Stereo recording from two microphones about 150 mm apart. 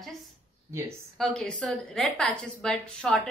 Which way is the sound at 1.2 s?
5° left (ahead or behind).